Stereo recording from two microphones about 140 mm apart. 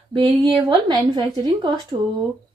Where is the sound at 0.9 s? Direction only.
30° right (ahead or behind).